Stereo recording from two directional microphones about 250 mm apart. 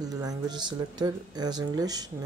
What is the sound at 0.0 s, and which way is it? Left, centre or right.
Speech, centre.